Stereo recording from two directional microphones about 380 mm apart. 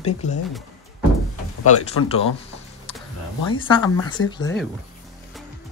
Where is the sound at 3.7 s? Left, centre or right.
Centre.